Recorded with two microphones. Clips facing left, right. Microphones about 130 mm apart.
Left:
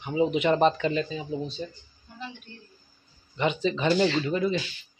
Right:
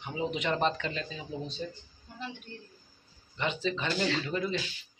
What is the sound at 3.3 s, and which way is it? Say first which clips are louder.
Speech: left 6 dB; 15° left (ahead or behind).